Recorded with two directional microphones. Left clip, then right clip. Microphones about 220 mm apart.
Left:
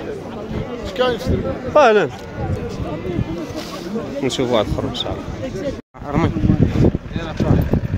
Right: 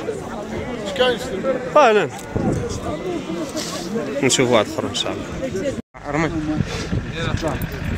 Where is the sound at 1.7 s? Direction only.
25° left (ahead or behind).